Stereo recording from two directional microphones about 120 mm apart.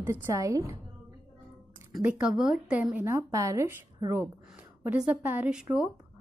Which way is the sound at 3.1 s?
25° right (ahead or behind).